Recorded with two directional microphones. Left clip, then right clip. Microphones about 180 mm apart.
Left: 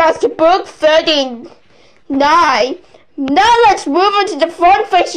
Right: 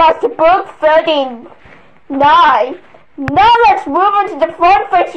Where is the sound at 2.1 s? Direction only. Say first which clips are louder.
Right 2 dB; 60° left (ahead or behind).